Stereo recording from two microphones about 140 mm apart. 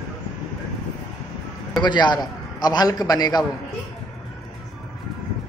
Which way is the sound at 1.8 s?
30° left (ahead or behind).